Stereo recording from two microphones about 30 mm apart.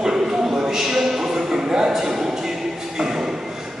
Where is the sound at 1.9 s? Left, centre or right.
Centre.